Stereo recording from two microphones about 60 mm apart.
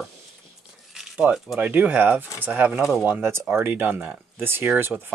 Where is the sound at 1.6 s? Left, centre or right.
Right.